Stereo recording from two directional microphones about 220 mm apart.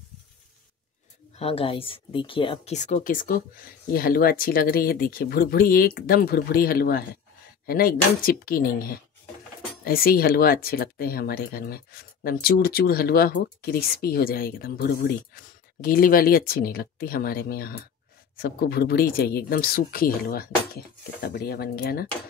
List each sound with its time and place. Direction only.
1.3 s speech: 25° left (ahead or behind); by 22.0 s 45° left (ahead or behind)